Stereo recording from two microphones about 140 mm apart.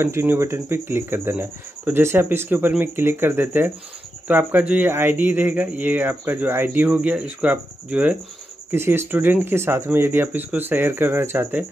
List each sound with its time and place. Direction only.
0.0 s speech: 15° right (ahead or behind)